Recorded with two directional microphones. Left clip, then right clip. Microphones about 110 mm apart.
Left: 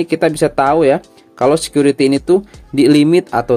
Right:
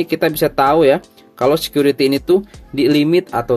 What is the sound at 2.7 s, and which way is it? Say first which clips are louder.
Speech: left 3 dB; 40° left (ahead or behind).